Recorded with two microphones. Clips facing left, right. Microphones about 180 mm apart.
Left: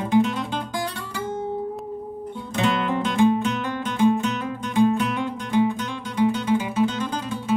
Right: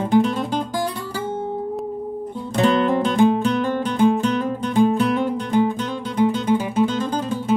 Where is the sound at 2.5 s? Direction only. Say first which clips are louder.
Right 6 dB; 35° right (ahead or behind).